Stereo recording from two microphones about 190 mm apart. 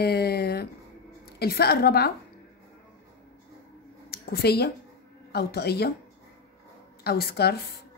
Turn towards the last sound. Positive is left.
turn(degrees=55)  # may be behind; listen again after turning